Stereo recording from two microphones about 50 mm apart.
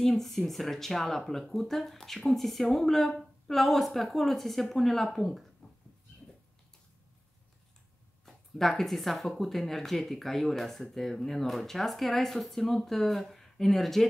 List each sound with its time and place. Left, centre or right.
0.0 s speech: centre
5.6 s a sound: centre
8.3 s speech: centre